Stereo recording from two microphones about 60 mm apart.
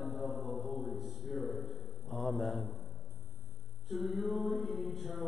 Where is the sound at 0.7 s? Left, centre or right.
Centre.